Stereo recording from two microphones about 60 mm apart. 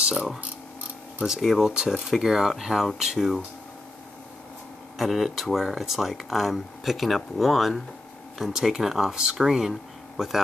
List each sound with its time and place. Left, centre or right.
1.2 s speech: centre
4.9 s speech: centre